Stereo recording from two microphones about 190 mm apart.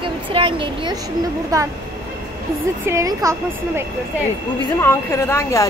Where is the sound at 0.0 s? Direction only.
25° right (ahead or behind).